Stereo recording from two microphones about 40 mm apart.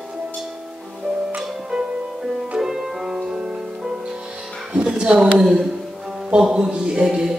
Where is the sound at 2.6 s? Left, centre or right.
Centre.